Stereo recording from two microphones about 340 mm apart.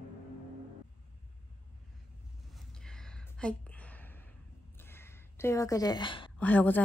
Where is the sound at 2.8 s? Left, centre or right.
Centre.